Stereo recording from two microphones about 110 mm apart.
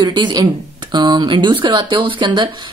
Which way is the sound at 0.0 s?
40° right (ahead or behind).